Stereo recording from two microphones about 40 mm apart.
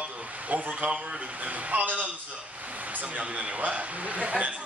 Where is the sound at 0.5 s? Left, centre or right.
Right.